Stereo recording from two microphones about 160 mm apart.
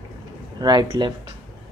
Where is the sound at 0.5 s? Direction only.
25° right (ahead or behind).